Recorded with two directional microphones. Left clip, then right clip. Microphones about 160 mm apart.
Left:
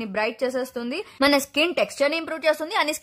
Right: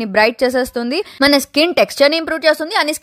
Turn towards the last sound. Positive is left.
turn(degrees=-30)  # may be behind; listen again after turning